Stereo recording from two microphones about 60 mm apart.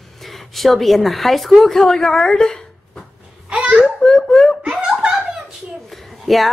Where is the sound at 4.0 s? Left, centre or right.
Centre.